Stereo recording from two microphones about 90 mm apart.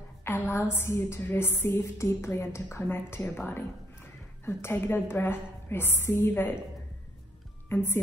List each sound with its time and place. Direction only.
0.2 s a woman's voice: 25° left (ahead or behind)
7.7 s a woman's voice: 25° left (ahead or behind)